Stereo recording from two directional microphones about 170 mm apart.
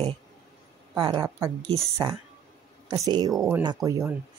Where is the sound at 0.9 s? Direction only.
25° right (ahead or behind).